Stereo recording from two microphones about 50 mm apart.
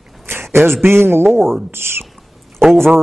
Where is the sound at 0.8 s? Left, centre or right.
Right.